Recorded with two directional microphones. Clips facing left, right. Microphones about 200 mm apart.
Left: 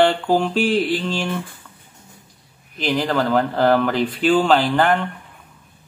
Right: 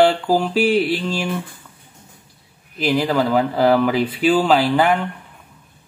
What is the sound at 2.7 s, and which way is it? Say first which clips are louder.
Speech: right 2 dB; 5° right (ahead or behind).